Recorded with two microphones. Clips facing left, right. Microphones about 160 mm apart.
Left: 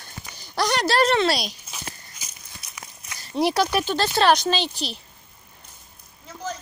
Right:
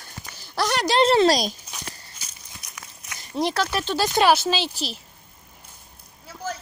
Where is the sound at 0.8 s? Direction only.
20° right (ahead or behind).